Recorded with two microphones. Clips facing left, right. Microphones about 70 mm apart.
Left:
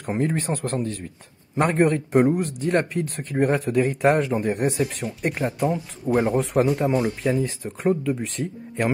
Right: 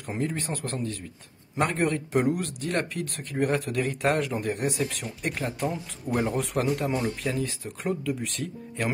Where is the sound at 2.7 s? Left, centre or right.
Left.